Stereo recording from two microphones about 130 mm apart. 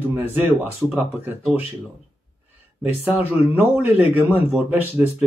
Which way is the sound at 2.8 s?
10° right (ahead or behind).